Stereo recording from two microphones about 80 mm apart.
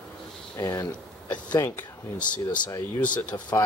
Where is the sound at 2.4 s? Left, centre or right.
Left.